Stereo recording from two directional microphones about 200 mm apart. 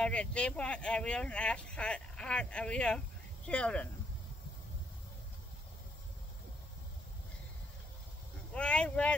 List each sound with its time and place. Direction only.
0.0 s speech: 5° left (ahead or behind)
8.5 s speech: 5° left (ahead or behind)